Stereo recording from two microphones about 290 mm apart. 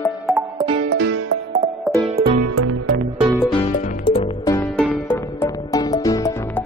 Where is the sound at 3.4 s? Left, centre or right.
Centre.